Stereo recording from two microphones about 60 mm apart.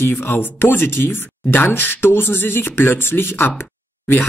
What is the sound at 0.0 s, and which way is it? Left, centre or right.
Speech, left.